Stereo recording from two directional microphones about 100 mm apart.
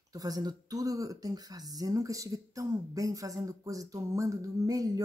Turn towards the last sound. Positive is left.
turn(degrees=-35)  # may be behind; listen again after turning